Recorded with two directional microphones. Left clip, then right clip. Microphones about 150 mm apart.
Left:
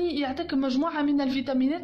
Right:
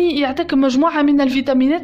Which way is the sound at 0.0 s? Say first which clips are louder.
Right 11 dB; 40° right (ahead or behind).